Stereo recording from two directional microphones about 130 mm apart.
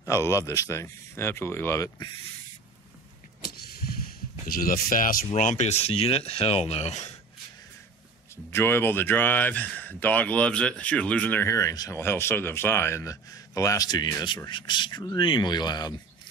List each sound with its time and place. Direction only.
0.0 s speech: 20° left (ahead or behind)
4.5 s speech: 90° left; by 7.2 s 60° left (ahead or behind)
8.5 s speech: 15° left (ahead or behind); by 15.9 s 35° left (ahead or behind)